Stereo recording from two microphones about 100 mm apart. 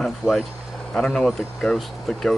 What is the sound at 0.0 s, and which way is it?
Speech, centre (ahead or behind).